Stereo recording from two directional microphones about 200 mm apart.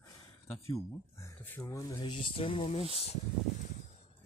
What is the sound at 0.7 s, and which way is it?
Speech, 15° left (ahead or behind).